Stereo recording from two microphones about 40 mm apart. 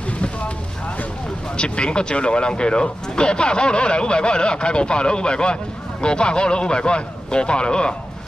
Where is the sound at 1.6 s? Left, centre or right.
Left.